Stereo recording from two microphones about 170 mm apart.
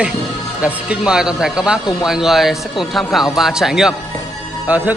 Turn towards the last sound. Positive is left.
turn(degrees=-10)  # may be behind; listen again after turning